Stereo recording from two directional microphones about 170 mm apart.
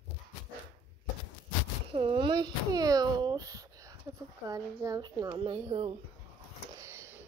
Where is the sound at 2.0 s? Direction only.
30° right (ahead or behind).